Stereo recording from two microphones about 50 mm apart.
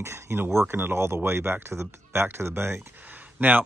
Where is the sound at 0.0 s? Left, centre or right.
Right.